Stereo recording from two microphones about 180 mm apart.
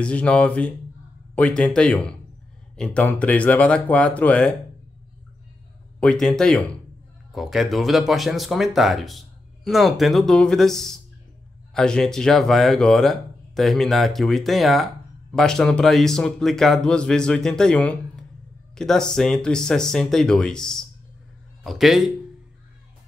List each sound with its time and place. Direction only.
0.0 s speech: 5° left (ahead or behind)
5.9 s speech: 5° left (ahead or behind)